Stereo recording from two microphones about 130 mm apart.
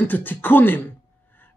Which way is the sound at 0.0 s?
15° left (ahead or behind).